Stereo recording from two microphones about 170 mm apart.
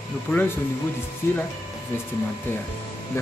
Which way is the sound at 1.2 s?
15° left (ahead or behind).